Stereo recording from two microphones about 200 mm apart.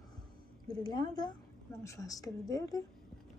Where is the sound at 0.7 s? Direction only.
20° left (ahead or behind).